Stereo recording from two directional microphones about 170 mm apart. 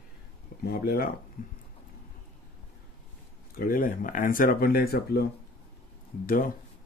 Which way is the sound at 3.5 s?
55° left (ahead or behind).